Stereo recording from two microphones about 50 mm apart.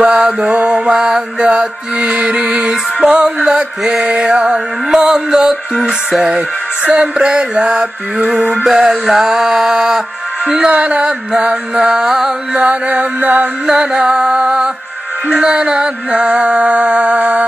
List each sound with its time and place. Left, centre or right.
0.0 s mantra: right
3.0 s music: centre
6.3 s mantra: right
8.6 s music: centre
10.7 s music: right
12.6 s mantra: right
13.7 s music: centre
15.2 s mantra: centre